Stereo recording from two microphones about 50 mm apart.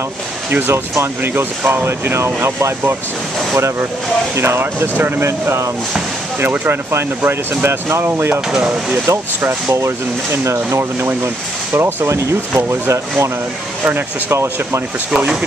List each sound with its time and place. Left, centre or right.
0.5 s speech: right
1.9 s speech: right
4.4 s speech: right
5.2 s speech: right
6.7 s speech: right
8.5 s speech: centre
9.7 s speech: right
14.3 s speech: right
15.0 s speech: centre